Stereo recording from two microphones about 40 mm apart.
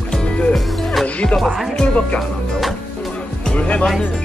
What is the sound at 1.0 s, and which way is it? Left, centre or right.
Music, left.